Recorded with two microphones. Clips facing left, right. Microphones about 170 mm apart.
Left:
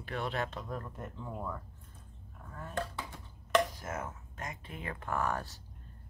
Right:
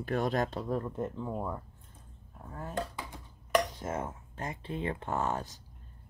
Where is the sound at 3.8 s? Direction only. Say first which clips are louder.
Right 4 dB; 30° right (ahead or behind).